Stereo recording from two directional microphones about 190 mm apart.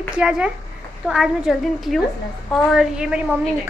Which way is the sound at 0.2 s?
5° right (ahead or behind).